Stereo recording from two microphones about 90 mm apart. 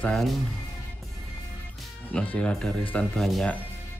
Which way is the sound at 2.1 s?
10° left (ahead or behind).